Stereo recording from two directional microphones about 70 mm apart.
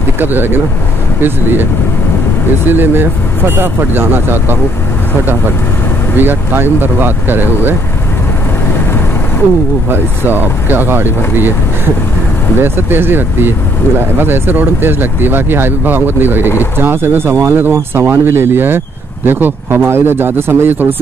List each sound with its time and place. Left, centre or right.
0.2 s speech: right
2.7 s speech: right
6.1 s speech: right
9.8 s speech: right